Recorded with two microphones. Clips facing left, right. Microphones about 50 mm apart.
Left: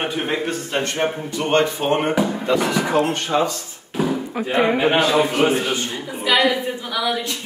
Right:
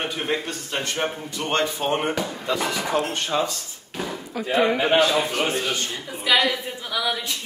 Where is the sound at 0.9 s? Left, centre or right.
Left.